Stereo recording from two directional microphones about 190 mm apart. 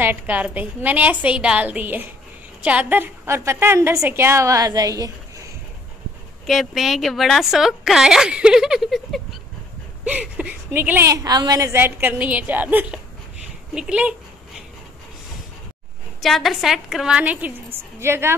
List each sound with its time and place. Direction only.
0.0 s a woman's voice: 10° right (ahead or behind)
6.4 s a woman's voice: centre (ahead or behind)
16.2 s a woman's voice: centre (ahead or behind)